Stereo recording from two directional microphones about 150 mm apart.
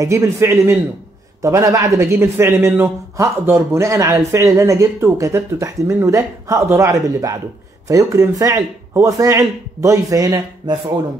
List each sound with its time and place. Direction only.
0.0 s a man's voice: 20° right (ahead or behind)